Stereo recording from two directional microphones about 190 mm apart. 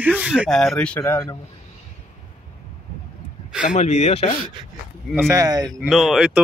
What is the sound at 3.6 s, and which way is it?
Speech, 40° left (ahead or behind).